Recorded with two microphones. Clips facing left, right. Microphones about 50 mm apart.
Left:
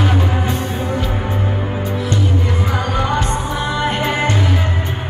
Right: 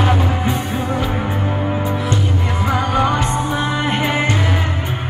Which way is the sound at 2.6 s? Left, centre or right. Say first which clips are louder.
Right 6 dB; right.